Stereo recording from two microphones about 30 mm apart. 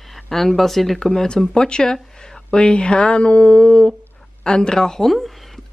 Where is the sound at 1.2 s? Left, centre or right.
Left.